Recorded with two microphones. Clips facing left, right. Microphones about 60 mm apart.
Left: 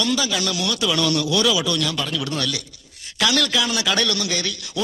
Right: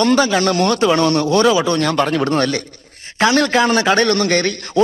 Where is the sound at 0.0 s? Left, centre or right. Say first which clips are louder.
Right 9 dB; right.